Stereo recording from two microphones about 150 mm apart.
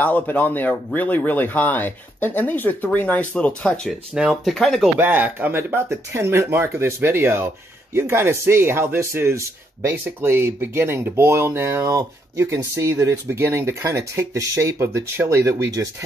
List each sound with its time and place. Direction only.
0.0 s speech: 10° left (ahead or behind)
4.1 s speech: 5° right (ahead or behind)
4.9 s speech: 15° right (ahead or behind)